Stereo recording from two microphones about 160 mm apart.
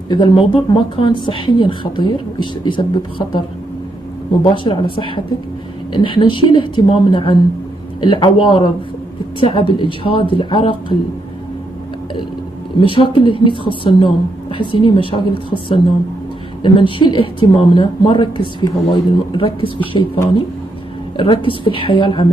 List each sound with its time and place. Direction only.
0.1 s speech: 30° left (ahead or behind)
12.7 s speech: 30° left (ahead or behind)
21.2 s speech: 35° left (ahead or behind)